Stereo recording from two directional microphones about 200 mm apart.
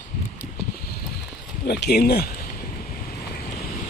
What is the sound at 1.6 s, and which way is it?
Speech, 55° left (ahead or behind).